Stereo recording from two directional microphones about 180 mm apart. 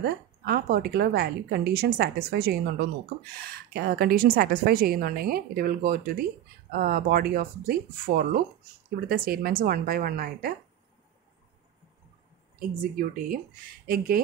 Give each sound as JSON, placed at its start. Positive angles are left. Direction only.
{"t": 0.0, "sound": "a woman's voice", "side_deg": -60}
{"t": 12.5, "sound": "a woman's voice", "side_deg": -50}